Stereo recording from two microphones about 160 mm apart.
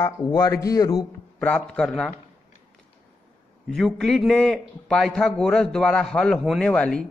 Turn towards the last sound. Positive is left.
turn(degrees=5)  # may be behind; listen again after turning